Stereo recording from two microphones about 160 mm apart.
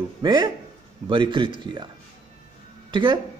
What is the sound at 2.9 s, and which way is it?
Speech, 30° right (ahead or behind).